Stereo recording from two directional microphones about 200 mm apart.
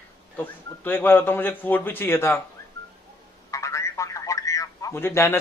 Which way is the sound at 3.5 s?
15° left (ahead or behind).